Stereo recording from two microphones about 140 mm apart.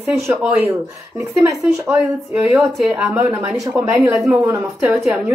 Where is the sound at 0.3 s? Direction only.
15° right (ahead or behind).